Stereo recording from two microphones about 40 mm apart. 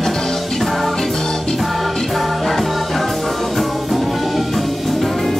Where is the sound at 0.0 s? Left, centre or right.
Centre.